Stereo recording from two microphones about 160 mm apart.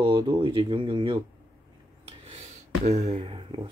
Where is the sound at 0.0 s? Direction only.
30° right (ahead or behind).